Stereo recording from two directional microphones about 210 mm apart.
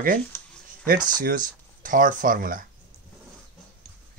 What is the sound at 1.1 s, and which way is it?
Speech, 40° right (ahead or behind).